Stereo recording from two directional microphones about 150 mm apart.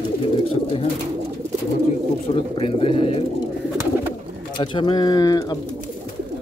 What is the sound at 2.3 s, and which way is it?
Speech, 40° left (ahead or behind).